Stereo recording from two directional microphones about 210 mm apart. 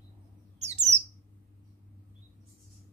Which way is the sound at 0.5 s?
30° right (ahead or behind).